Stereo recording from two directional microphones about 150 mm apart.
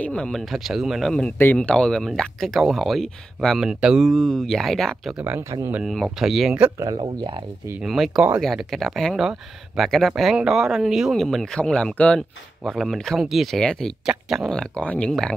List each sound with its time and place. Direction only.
0.0 s speech: 5° left (ahead or behind)
5.2 s speech: 15° right (ahead or behind)
5.9 s speech: centre (ahead or behind)
7.0 s speech: 35° right (ahead or behind)
7.8 s speech: centre (ahead or behind)